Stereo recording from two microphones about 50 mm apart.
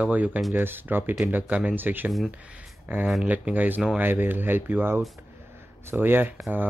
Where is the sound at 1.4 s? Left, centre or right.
Right.